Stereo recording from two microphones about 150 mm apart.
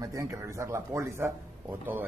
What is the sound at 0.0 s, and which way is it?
A man's voice, 20° right (ahead or behind).